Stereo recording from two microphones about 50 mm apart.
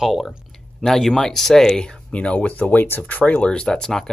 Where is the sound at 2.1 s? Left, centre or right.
Left.